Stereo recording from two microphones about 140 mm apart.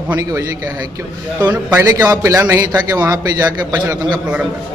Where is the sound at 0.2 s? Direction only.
20° right (ahead or behind).